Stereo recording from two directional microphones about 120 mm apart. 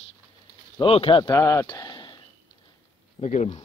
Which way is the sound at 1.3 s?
25° left (ahead or behind).